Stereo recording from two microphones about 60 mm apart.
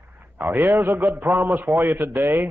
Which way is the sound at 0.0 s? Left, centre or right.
Right.